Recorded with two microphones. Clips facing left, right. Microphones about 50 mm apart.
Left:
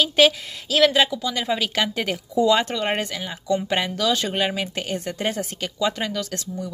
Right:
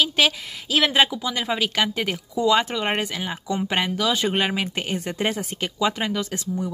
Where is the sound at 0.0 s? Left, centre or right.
Centre.